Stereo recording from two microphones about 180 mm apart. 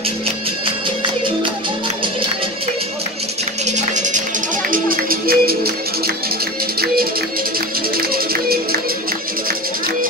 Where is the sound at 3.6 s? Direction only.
40° right (ahead or behind); by 8.6 s 55° right (ahead or behind).